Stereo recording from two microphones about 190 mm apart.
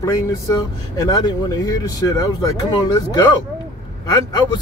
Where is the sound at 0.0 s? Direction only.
15° left (ahead or behind).